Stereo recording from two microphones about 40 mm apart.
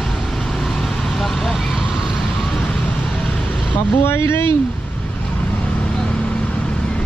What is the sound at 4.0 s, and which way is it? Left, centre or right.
Speech, left.